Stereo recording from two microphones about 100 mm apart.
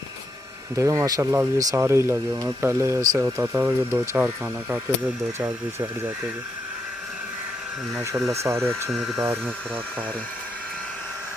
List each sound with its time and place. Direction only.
0.7 s speech: 30° right (ahead or behind)
1.2 s speech: 20° right (ahead or behind)
8.3 s speech: 30° right (ahead or behind)
8.9 s speech: 5° right (ahead or behind)